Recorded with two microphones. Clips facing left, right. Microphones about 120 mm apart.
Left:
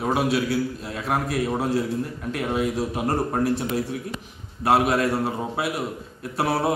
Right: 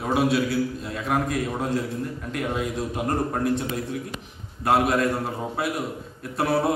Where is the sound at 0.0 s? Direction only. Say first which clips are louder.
Even; centre (ahead or behind).